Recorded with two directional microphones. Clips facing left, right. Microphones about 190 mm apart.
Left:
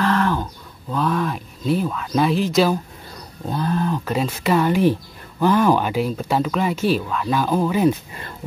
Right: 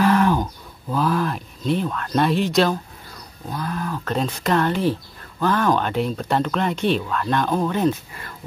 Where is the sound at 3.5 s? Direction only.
25° left (ahead or behind).